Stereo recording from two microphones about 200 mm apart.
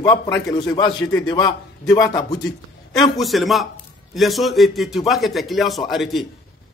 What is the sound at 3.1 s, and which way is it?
Speech, centre (ahead or behind).